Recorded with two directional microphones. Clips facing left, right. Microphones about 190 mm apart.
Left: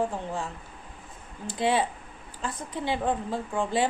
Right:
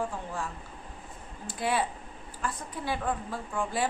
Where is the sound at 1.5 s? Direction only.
25° left (ahead or behind).